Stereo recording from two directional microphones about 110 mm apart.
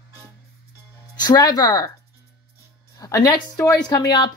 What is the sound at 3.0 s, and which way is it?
A woman's voice, 35° left (ahead or behind).